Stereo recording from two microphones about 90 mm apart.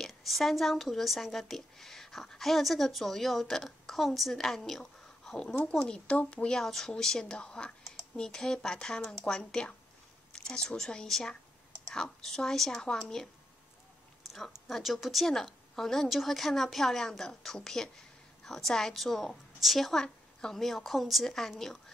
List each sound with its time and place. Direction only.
0.0 s a woman's voice: centre (ahead or behind)
14.7 s a woman's voice: centre (ahead or behind)